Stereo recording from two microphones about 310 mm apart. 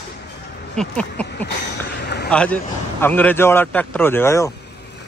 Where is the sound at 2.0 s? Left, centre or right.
Left.